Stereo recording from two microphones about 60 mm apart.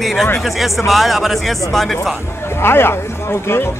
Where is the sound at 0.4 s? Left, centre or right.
Centre.